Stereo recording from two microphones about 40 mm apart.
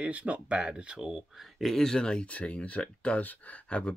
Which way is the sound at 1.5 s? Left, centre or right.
Centre.